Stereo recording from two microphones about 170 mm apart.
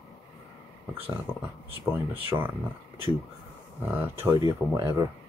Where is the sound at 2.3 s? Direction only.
10° right (ahead or behind).